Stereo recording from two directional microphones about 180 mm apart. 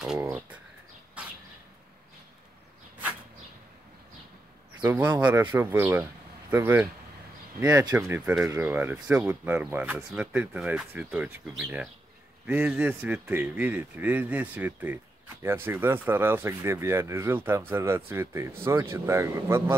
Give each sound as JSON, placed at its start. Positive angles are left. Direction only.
{"t": 0.0, "sound": "speech", "side_deg": -5}
{"t": 1.2, "sound": "bird", "side_deg": -5}
{"t": 4.8, "sound": "speech", "side_deg": -10}
{"t": 5.1, "sound": "speech", "side_deg": -20}
{"t": 7.9, "sound": "speech", "side_deg": -10}